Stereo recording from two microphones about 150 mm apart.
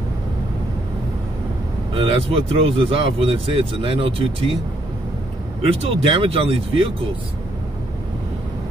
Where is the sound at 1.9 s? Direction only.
35° right (ahead or behind).